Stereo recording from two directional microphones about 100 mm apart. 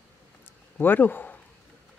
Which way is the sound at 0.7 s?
20° left (ahead or behind).